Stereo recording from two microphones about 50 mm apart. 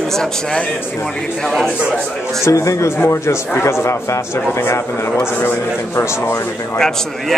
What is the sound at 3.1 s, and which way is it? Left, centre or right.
A man's voice, left.